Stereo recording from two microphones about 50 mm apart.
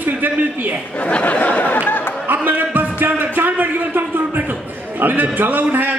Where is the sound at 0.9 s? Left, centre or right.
Left.